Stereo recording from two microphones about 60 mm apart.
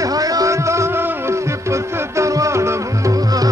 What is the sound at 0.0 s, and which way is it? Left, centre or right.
Music, right.